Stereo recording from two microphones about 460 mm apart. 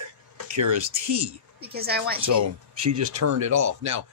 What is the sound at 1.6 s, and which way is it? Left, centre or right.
Speech, right.